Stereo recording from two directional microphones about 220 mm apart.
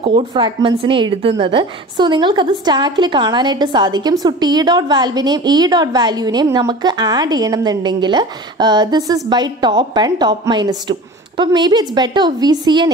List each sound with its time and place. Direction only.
0.0 s a woman's voice: 25° right (ahead or behind)